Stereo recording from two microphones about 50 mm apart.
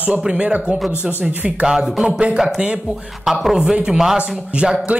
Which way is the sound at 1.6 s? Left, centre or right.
Centre.